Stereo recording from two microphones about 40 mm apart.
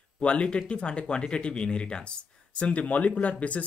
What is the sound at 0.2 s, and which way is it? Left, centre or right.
Speech, left.